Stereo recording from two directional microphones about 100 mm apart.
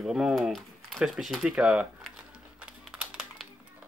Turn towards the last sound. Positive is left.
turn(degrees=-10)  # may be behind; listen again after turning